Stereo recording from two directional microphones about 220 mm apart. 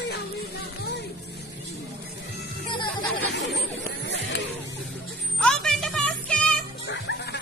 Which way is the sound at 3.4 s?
50° left (ahead or behind).